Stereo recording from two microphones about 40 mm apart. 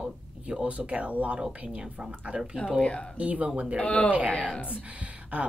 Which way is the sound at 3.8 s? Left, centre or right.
Left.